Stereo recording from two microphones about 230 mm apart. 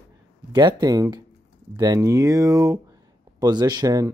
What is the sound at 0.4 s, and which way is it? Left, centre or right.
Speech, centre.